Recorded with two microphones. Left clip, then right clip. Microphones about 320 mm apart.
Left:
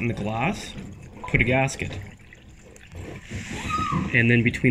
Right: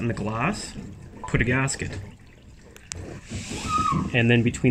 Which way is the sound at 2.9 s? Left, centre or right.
Right.